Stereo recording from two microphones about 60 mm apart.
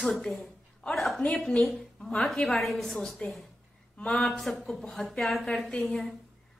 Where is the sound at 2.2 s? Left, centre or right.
Centre.